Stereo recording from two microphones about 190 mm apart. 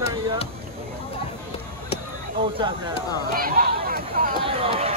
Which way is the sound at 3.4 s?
50° right (ahead or behind).